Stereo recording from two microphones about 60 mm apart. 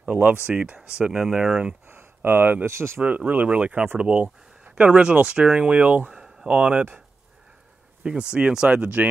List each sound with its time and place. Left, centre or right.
0.0 s speech: right
0.9 s speech: centre
1.9 s a sound: right
2.6 s speech: right
3.0 s speech: right
8.0 s speech: centre